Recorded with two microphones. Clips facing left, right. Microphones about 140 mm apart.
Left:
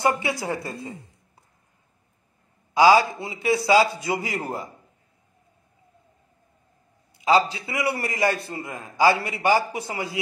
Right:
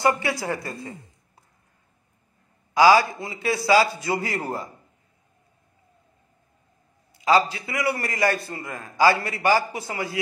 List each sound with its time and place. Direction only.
0.0 s a man's voice: 20° left (ahead or behind)
2.7 s a man's voice: 20° left (ahead or behind)
7.2 s a man's voice: 20° left (ahead or behind)